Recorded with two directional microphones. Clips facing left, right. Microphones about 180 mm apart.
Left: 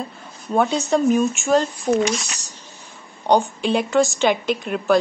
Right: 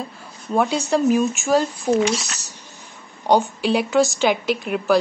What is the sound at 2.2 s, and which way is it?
Speech, 15° left (ahead or behind).